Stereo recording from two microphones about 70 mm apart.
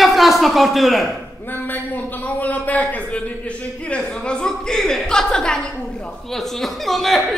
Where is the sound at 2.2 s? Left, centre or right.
Left.